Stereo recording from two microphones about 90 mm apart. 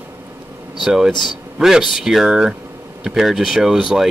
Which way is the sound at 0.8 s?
5° right (ahead or behind).